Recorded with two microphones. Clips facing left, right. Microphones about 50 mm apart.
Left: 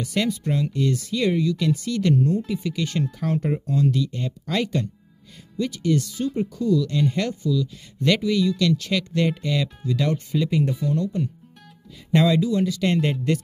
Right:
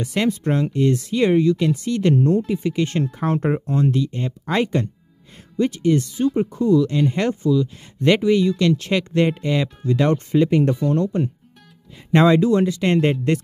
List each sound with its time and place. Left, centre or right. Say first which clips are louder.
0.0 s speech: right 3 dB; right